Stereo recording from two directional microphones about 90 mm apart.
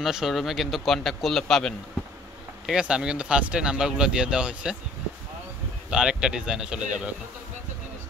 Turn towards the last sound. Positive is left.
turn(degrees=-5)  # may be behind; listen again after turning